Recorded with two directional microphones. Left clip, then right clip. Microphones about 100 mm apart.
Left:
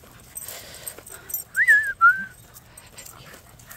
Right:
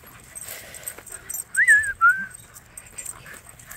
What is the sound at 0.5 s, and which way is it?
Dog, 30° left (ahead or behind).